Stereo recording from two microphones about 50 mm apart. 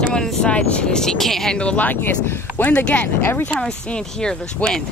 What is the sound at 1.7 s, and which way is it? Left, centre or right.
Speech, left.